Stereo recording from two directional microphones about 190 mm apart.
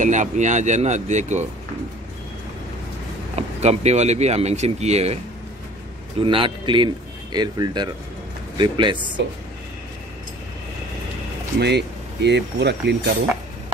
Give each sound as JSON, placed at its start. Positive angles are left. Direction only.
{"t": 0.0, "sound": "speech", "side_deg": -40}
{"t": 3.3, "sound": "speech", "side_deg": -35}
{"t": 6.2, "sound": "a man's voice", "side_deg": -25}
{"t": 11.6, "sound": "speech", "side_deg": -65}